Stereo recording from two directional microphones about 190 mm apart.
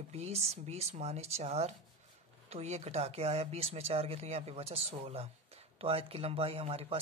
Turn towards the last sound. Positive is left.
turn(degrees=-30)  # may be behind; listen again after turning